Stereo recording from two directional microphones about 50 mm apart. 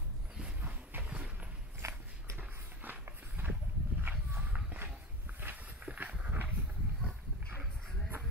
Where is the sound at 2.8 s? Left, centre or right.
Right.